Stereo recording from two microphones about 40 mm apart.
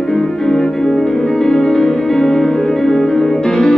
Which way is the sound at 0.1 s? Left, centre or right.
Centre.